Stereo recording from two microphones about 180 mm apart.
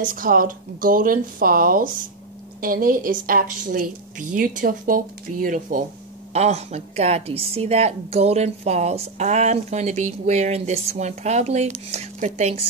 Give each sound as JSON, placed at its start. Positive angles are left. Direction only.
{"t": 0.0, "sound": "a woman's voice", "side_deg": -50}
{"t": 6.3, "sound": "a woman's voice", "side_deg": -35}